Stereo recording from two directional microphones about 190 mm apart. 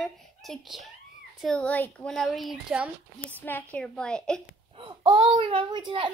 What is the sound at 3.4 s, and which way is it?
A child's voice, 10° left (ahead or behind).